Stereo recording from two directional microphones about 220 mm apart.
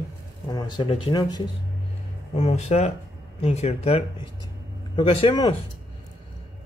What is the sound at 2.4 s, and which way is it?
Speech, 30° left (ahead or behind).